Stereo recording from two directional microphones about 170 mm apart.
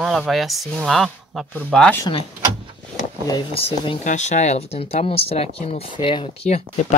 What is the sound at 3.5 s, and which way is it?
Speech, 35° left (ahead or behind).